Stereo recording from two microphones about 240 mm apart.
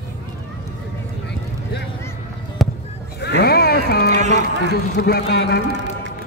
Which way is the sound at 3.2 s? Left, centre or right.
Left.